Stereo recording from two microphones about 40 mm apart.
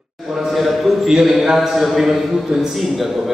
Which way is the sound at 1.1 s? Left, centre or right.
Centre.